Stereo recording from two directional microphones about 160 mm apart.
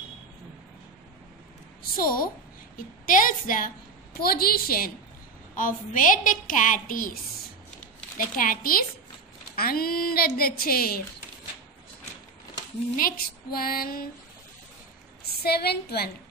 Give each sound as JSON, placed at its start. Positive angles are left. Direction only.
{"t": 1.8, "sound": "a woman's voice", "side_deg": 65}
{"t": 4.2, "sound": "a woman's voice", "side_deg": 70}
{"t": 5.6, "sound": "a woman's voice", "side_deg": 55}
{"t": 8.4, "sound": "a woman's voice", "side_deg": 65}
{"t": 12.9, "sound": "a woman's voice", "side_deg": 65}
{"t": 15.2, "sound": "a woman's voice", "side_deg": 80}